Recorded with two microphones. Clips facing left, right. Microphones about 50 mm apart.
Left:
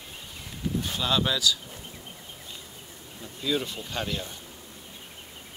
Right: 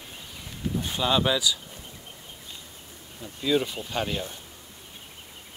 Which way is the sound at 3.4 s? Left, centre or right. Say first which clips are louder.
Right 4 dB; centre.